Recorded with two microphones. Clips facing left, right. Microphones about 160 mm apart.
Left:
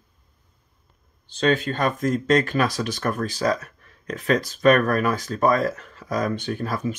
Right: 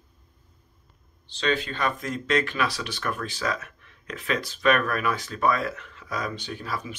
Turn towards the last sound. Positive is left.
turn(degrees=45)  # may be behind; listen again after turning